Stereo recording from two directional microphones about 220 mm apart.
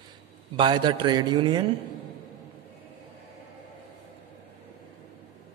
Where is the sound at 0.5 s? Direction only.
20° right (ahead or behind).